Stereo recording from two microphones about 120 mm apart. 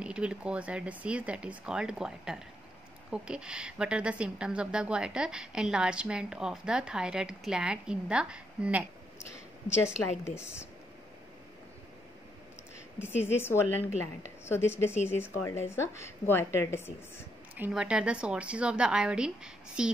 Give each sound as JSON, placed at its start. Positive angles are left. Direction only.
{"t": 0.0, "sound": "a woman's voice", "side_deg": -10}
{"t": 10.2, "sound": "a woman's voice", "side_deg": 20}
{"t": 13.0, "sound": "a woman's voice", "side_deg": 20}
{"t": 17.6, "sound": "a woman's voice", "side_deg": -5}